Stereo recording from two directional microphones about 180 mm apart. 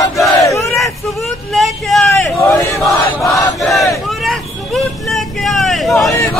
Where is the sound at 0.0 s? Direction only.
20° left (ahead or behind).